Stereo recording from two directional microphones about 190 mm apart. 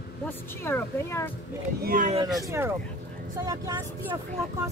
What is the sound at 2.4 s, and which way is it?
A woman's voice, 15° right (ahead or behind).